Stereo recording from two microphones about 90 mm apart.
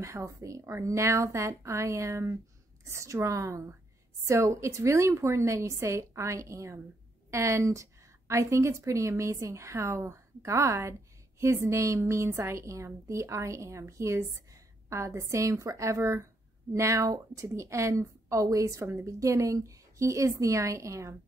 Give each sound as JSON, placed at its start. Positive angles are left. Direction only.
{"t": 0.0, "sound": "a woman's voice", "side_deg": -35}